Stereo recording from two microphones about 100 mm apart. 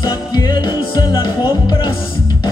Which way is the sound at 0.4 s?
45° left (ahead or behind).